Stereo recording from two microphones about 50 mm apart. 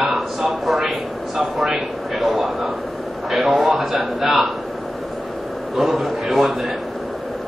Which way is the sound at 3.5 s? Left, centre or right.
Centre.